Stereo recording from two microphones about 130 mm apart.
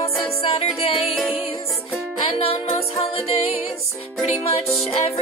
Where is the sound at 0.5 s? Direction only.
50° left (ahead or behind).